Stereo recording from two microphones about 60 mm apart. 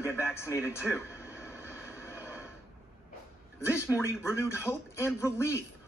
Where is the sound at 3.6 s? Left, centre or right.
Left.